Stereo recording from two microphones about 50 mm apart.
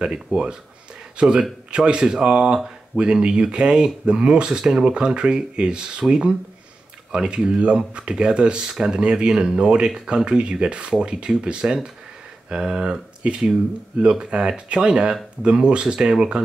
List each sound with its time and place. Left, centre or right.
0.0 s speech: centre